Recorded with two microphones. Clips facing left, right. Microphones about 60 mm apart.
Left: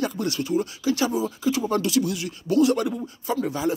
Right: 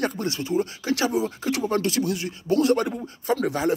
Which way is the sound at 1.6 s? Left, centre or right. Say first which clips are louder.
Right 2 dB; right.